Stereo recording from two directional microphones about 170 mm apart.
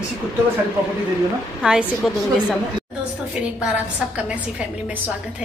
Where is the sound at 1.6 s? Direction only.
5° right (ahead or behind).